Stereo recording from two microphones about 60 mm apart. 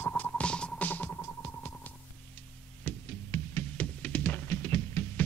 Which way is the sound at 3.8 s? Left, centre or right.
Left.